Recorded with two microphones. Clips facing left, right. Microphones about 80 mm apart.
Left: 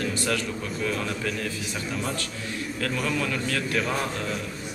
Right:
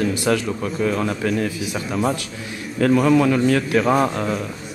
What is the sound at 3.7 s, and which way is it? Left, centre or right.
Speech, right.